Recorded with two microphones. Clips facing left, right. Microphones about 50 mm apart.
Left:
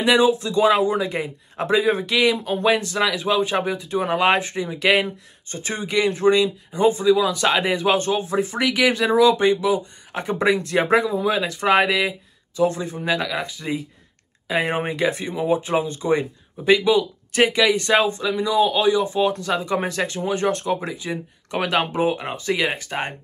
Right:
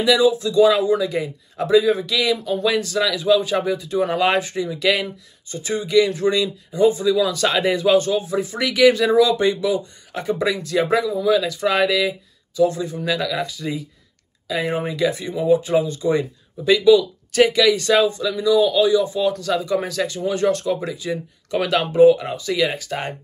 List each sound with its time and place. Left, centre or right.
0.0 s speech: left
7.1 s speech: left
8.5 s speech: left